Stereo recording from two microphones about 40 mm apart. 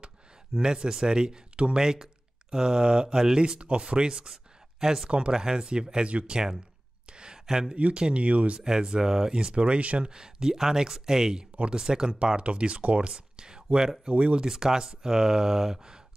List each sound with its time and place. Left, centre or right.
0.6 s speech: centre
4.3 s a sound: centre
5.3 s speech: centre
6.0 s speech: right
7.1 s a sound: right
7.7 s speech: right
8.5 s speech: centre
9.5 s speech: right
10.0 s speech: centre; by 13.1 s right
13.1 s a sound: centre
14.1 s speech: right
14.4 s speech: centre